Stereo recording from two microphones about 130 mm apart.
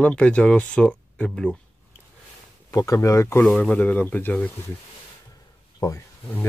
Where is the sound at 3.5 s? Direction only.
5° left (ahead or behind).